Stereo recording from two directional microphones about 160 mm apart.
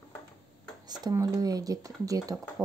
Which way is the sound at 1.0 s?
20° right (ahead or behind).